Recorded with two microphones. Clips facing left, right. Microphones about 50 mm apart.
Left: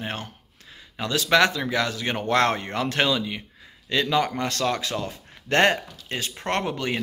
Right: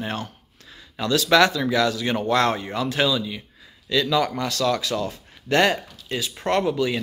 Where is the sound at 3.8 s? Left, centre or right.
Left.